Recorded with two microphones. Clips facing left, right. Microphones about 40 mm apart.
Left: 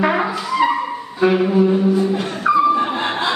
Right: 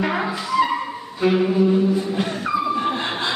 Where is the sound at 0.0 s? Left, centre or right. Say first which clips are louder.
Left 5 dB; centre.